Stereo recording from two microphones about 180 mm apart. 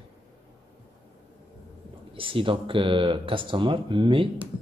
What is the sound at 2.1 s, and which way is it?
Speech, 30° right (ahead or behind).